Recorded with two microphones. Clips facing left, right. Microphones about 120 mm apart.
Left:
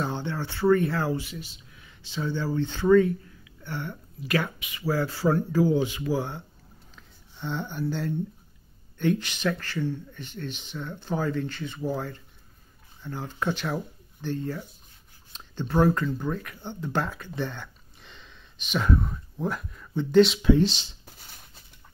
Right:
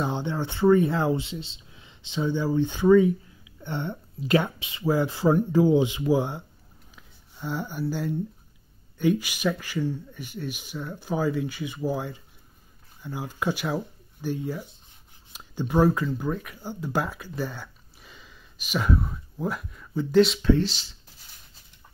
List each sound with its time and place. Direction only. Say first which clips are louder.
0.0 s speech: right 2 dB; 15° right (ahead or behind)
7.0 s speech: even; 5° right (ahead or behind)
20.4 s speech: left 1 dB; 20° left (ahead or behind)